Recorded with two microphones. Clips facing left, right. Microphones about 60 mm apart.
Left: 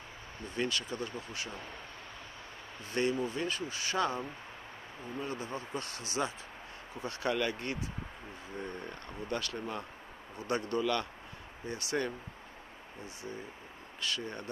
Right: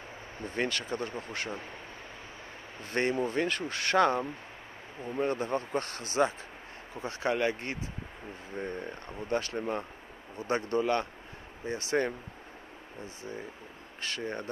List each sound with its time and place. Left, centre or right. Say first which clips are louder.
0.6 s speech: right 3 dB; right
2.8 s speech: right 3 dB; right
7.0 s speech: right 3 dB; right
14.0 s speech: right 2 dB; right